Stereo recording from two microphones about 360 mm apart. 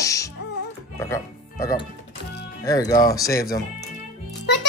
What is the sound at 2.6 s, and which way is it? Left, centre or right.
Speech, centre.